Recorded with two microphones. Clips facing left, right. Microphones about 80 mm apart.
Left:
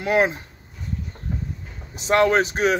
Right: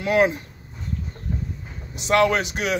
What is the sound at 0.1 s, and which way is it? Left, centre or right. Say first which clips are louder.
Speech: right 1 dB; left.